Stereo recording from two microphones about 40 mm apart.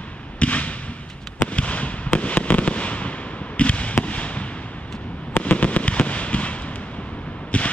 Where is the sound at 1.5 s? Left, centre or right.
Left.